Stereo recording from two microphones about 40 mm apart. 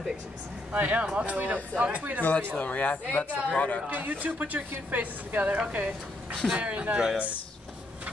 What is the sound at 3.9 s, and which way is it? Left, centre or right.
A man's voice, right.